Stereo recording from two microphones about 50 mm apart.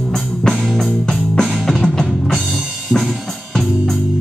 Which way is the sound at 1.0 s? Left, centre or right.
Centre.